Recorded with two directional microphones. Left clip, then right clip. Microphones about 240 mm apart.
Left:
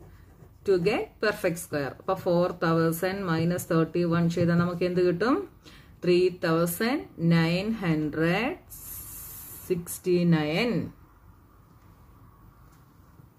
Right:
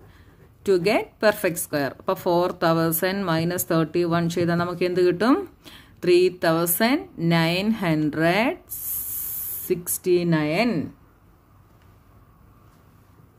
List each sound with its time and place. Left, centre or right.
0.7 s speech: right
9.7 s speech: right